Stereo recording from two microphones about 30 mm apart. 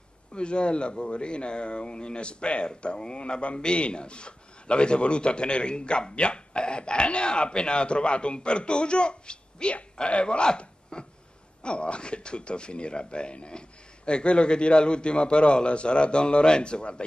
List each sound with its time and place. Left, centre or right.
0.3 s speech: left
10.9 s a sound: left
11.6 s speech: left